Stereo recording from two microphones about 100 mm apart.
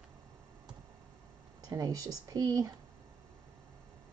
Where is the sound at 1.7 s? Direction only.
35° right (ahead or behind).